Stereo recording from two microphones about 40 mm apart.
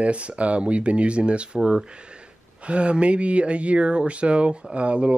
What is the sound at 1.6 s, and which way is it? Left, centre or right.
Speech, centre.